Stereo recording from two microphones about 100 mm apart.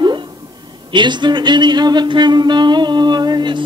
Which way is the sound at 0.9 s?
50° right (ahead or behind).